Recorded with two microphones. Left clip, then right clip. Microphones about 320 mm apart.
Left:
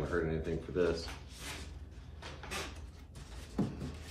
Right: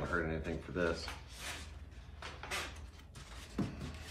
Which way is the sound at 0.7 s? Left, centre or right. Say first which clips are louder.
Left 3 dB; right.